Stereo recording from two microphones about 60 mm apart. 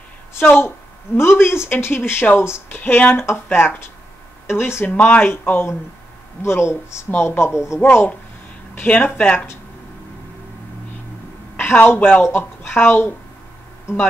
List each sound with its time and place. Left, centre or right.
0.3 s a woman's voice: left
4.8 s speech: left
6.4 s speech: left
7.8 s speech: left
11.9 s speech: left